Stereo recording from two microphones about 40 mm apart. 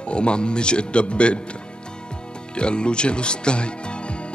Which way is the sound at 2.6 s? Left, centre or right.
Left.